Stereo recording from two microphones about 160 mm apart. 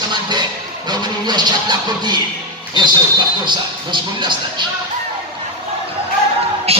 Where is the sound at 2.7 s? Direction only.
30° right (ahead or behind).